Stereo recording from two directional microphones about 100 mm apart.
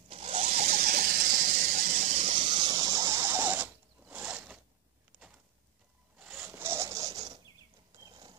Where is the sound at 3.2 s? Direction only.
20° right (ahead or behind).